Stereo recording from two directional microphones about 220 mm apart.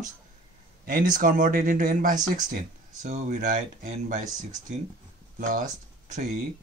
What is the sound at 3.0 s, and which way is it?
Speech, 35° right (ahead or behind).